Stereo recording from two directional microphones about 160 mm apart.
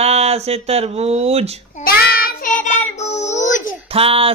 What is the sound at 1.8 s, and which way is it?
Child singing, 70° left (ahead or behind).